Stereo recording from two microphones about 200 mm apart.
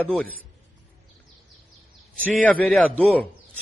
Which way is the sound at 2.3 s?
5° left (ahead or behind).